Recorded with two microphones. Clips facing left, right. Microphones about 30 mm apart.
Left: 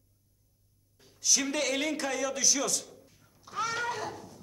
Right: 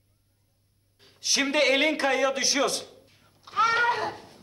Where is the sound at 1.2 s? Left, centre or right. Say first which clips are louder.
Right 5 dB; right.